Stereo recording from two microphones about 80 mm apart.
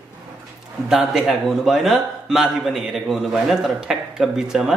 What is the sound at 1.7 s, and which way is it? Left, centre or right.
Speech, centre.